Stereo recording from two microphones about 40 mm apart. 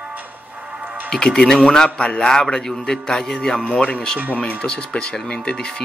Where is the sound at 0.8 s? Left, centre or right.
Right.